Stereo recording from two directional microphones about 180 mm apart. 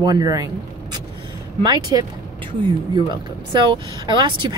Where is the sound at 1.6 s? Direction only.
25° right (ahead or behind).